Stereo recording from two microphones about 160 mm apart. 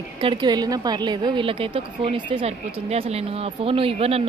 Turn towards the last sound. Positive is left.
turn(degrees=-40)  # may be behind; listen again after turning